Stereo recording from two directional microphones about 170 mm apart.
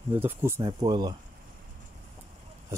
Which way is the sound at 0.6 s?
25° right (ahead or behind).